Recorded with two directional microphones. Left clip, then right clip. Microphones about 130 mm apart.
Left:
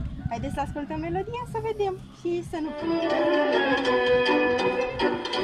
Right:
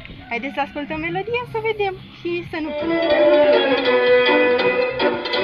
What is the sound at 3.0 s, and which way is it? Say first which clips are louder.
Music: right 10 dB; 25° right (ahead or behind).